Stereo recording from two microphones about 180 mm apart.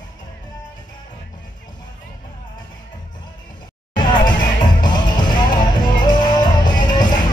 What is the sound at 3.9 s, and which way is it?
Music, 25° left (ahead or behind).